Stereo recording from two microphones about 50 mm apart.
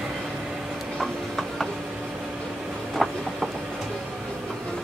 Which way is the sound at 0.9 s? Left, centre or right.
Centre.